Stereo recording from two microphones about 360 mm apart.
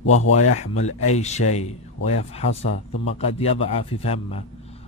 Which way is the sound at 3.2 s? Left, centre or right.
Centre.